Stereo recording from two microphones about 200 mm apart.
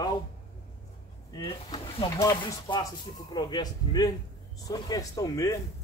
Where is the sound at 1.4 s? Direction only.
25° left (ahead or behind).